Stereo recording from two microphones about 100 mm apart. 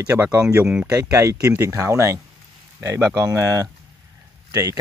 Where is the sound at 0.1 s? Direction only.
20° right (ahead or behind).